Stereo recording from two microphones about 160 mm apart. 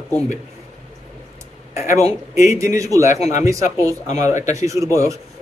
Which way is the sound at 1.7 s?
15° right (ahead or behind).